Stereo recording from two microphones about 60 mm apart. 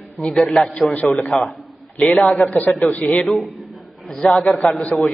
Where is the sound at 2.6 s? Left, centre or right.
Left.